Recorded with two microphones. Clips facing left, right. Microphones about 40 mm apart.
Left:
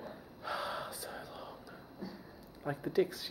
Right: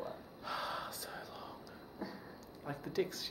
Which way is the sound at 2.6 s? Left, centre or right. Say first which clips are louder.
Left 5 dB; centre.